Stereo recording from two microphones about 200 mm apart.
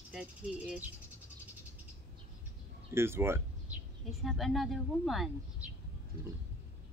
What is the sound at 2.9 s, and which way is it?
Speech, 10° right (ahead or behind).